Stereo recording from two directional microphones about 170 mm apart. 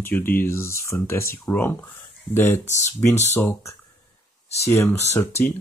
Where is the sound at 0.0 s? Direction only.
10° left (ahead or behind).